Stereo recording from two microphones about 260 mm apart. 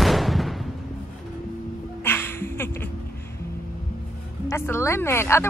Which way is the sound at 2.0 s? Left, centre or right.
Centre.